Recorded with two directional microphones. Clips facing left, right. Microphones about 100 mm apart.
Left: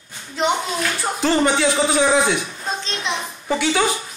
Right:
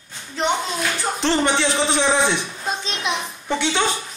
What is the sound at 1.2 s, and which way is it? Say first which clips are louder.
A man's voice: left 3 dB; 5° left (ahead or behind).